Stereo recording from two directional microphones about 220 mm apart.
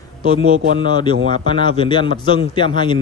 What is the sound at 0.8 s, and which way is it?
A man's voice, 20° left (ahead or behind).